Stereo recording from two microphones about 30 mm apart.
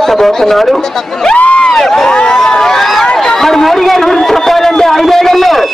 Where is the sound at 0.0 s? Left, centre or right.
Centre.